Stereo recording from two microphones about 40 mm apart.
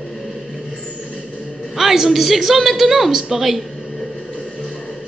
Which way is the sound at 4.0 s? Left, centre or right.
Centre.